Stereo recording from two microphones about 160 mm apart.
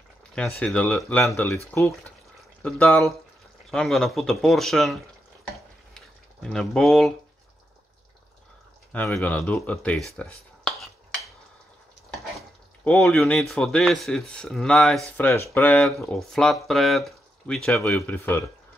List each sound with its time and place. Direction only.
0.4 s speech: 5° left (ahead or behind)
3.7 s speech: 5° left (ahead or behind)
5.9 s a sound: centre (ahead or behind)
9.1 s speech: 5° left (ahead or behind)
12.2 s speech: centre (ahead or behind)